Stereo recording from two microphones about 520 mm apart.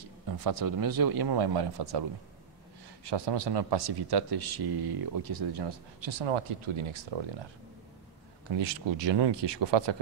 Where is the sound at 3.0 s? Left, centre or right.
Right.